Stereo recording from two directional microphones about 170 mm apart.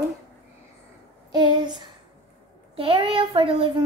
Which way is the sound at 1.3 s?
25° right (ahead or behind).